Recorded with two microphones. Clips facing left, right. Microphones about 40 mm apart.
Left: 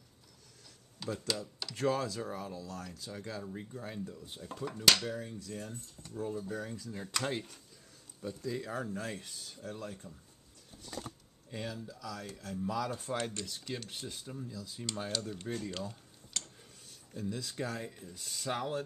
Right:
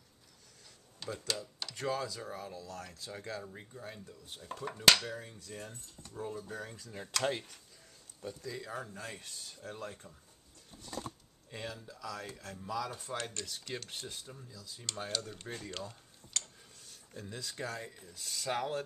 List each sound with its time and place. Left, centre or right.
0.9 s speech: centre
2.0 s speech: centre
2.6 s speech: right
3.4 s speech: centre
4.6 s speech: centre
8.5 s speech: centre
9.7 s speech: centre
11.5 s speech: centre
12.6 s speech: centre
15.5 s tick-tock: centre
17.1 s speech: centre
17.4 s speech: centre